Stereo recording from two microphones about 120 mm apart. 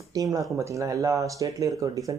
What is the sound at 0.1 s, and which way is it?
Speech, 30° right (ahead or behind).